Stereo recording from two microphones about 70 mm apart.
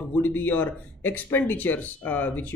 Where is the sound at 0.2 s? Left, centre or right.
Left.